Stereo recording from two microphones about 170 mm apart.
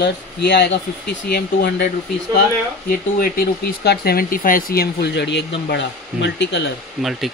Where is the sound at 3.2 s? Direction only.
60° left (ahead or behind); by 6.6 s 90° left.